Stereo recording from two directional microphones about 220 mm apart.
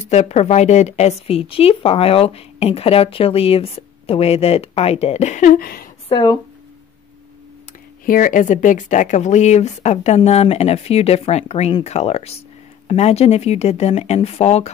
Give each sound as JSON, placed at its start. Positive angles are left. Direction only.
{"t": 0.0, "sound": "a woman's voice", "side_deg": 30}
{"t": 6.0, "sound": "speech", "side_deg": 20}
{"t": 8.0, "sound": "a woman's voice", "side_deg": 40}